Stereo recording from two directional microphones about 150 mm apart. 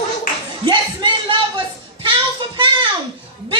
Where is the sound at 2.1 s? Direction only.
35° right (ahead or behind).